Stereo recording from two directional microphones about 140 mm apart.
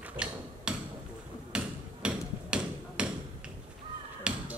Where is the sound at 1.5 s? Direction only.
5° right (ahead or behind).